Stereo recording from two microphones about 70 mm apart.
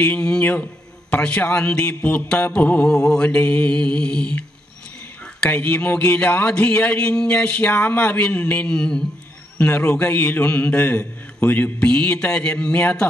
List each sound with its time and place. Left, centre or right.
0.0 s speech: centre
1.1 s music: centre
5.5 s speech: left
11.9 s music: centre